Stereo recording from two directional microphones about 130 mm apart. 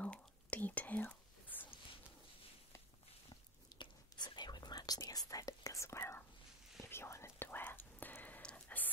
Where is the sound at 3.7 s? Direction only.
35° left (ahead or behind).